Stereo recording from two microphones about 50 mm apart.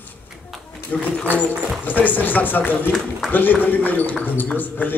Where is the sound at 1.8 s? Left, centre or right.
Left.